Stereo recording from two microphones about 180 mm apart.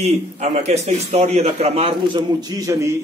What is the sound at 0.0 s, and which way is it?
A man's voice, 35° right (ahead or behind).